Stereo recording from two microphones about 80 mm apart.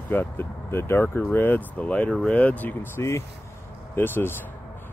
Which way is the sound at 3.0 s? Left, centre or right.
Left.